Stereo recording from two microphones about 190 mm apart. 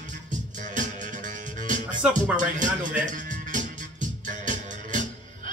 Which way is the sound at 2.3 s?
40° right (ahead or behind).